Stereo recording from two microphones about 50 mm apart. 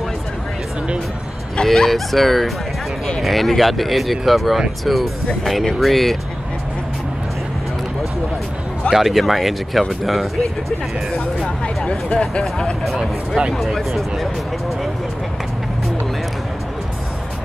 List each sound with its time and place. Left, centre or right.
1.6 s speech: centre
8.9 s speech: centre
11.4 s speech: left
13.6 s speech: centre